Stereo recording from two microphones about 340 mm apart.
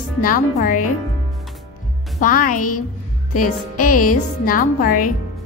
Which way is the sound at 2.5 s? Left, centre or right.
Left.